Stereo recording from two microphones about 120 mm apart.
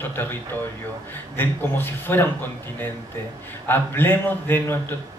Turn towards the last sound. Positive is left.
turn(degrees=15)  # may be behind; listen again after turning